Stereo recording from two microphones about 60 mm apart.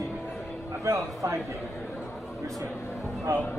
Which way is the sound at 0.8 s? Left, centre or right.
Right.